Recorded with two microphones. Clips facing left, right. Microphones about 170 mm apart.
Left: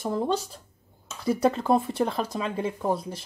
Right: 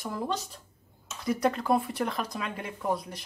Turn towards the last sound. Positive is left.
turn(degrees=30)  # may be behind; listen again after turning